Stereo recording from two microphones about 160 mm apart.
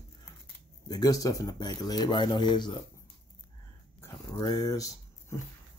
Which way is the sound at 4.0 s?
20° left (ahead or behind).